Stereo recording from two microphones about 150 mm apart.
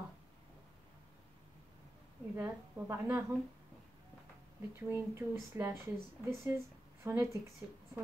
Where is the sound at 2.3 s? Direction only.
20° right (ahead or behind).